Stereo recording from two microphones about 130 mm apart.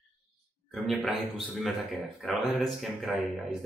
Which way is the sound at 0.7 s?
Centre (ahead or behind).